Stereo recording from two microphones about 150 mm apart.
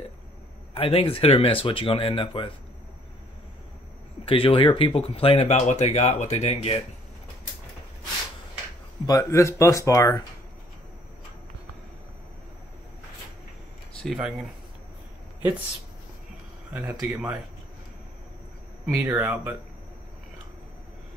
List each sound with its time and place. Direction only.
0.7 s speech: 40° left (ahead or behind)
4.3 s speech: 35° left (ahead or behind)
9.0 s speech: 20° left (ahead or behind)
14.0 s speech: 5° right (ahead or behind)
16.7 s speech: 5° right (ahead or behind)
19.0 s speech: 15° right (ahead or behind)